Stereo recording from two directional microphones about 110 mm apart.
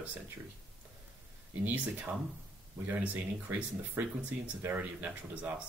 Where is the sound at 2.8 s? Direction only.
20° right (ahead or behind).